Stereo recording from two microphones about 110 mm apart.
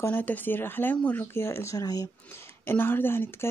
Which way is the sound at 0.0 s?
15° left (ahead or behind).